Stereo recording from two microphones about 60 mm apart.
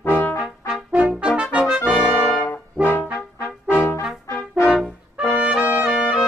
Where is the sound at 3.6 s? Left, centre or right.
Left.